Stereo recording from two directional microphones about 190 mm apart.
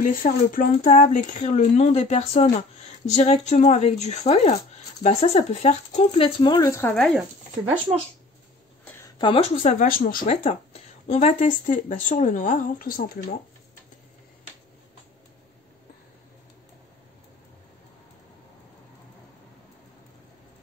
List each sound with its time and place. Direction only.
0.0 s speech: 45° left (ahead or behind); by 6.9 s 15° left (ahead or behind)
7.0 s speech: centre (ahead or behind)
8.8 s a sound: 20° left (ahead or behind)
9.7 s speech: 45° left (ahead or behind)
10.2 s speech: 35° left (ahead or behind)